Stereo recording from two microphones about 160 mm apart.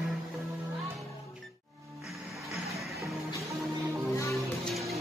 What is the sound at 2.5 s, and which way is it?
Music, centre (ahead or behind).